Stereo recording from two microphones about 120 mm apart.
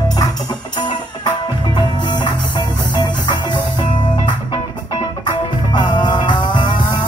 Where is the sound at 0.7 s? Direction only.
35° left (ahead or behind).